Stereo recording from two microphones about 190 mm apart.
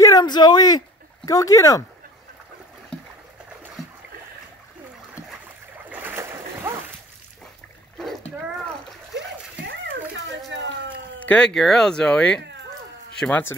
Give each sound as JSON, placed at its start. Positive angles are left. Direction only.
{"t": 0.0, "sound": "speech", "side_deg": 20}
{"t": 2.9, "sound": "boat", "side_deg": 5}
{"t": 5.9, "sound": "splash", "side_deg": -10}
{"t": 9.7, "sound": "a sound", "side_deg": -75}
{"t": 11.2, "sound": "a man's voice", "side_deg": 5}